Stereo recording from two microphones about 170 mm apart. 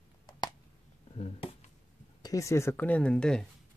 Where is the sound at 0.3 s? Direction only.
25° left (ahead or behind).